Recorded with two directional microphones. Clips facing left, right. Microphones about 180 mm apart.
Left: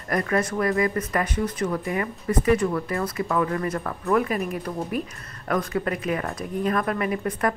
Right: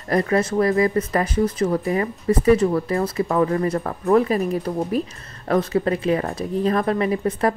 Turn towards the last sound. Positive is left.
turn(degrees=-30)  # may be behind; listen again after turning